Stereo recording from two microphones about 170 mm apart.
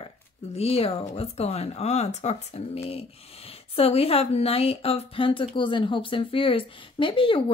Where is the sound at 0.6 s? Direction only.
35° left (ahead or behind).